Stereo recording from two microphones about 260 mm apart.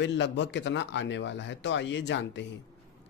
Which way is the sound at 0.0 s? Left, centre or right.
Left.